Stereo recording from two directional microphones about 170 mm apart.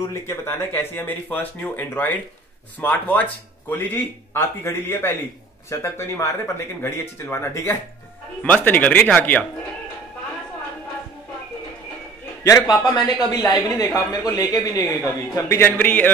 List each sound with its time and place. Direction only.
0.3 s speech: 15° left (ahead or behind)
12.4 s speech: 20° left (ahead or behind)